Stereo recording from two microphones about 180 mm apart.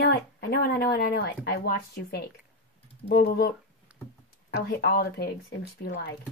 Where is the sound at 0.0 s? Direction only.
60° left (ahead or behind).